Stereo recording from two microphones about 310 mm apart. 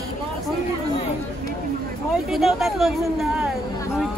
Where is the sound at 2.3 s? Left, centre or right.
Centre.